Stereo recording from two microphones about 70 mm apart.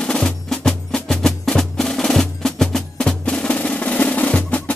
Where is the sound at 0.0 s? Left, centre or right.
Centre.